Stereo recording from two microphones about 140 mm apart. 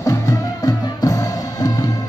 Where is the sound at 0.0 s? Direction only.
25° left (ahead or behind).